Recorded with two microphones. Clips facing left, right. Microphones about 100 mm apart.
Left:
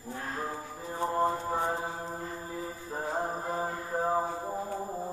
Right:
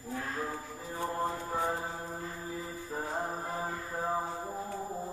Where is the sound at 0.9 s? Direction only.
20° left (ahead or behind).